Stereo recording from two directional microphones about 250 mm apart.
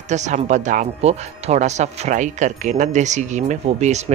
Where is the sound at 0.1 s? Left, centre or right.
Right.